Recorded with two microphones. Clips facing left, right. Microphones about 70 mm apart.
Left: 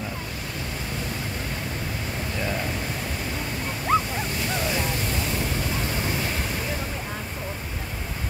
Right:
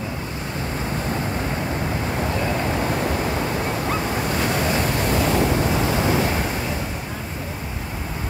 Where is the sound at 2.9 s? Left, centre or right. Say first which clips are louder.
Right 9 dB; right.